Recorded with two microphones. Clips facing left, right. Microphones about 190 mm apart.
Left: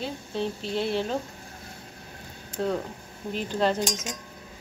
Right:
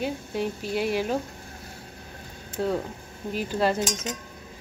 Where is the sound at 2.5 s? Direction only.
5° right (ahead or behind).